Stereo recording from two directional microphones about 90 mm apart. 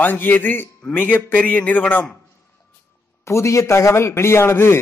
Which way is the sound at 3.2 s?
30° left (ahead or behind).